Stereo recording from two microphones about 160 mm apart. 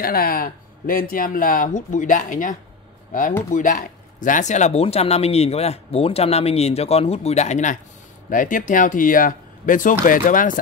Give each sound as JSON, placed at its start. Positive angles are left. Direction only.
{"t": 0.0, "sound": "speech", "side_deg": 65}